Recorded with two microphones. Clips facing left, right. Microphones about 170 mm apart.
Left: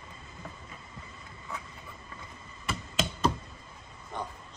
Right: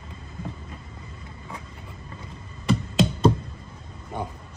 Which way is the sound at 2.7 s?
30° right (ahead or behind).